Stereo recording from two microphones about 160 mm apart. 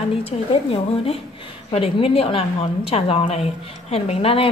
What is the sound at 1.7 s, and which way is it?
A woman's voice, 35° left (ahead or behind).